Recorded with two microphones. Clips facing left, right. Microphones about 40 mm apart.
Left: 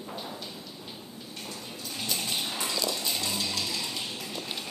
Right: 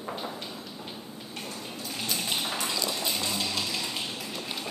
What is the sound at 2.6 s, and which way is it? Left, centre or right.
Clip-clop, centre.